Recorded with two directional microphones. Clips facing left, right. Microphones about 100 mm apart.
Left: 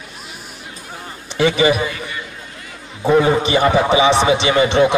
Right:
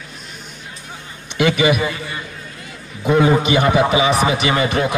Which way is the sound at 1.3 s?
30° left (ahead or behind).